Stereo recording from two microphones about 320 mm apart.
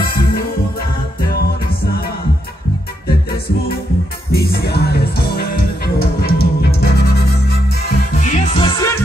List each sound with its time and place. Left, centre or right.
4.3 s music: left
8.2 s music: centre